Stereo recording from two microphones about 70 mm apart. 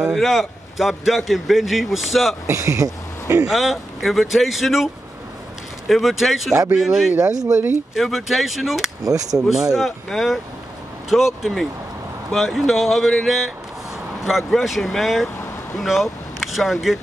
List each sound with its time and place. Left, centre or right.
0.1 s a man's voice: centre
2.4 s speech: right
3.4 s a man's voice: centre
5.9 s a man's voice: centre
7.2 s speech: right
7.9 s a man's voice: centre
9.0 s speech: right
9.5 s a man's voice: centre